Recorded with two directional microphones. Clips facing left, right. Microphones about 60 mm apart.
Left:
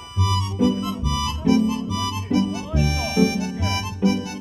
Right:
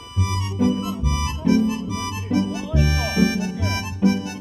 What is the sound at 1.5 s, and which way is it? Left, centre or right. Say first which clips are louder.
Music: even; right.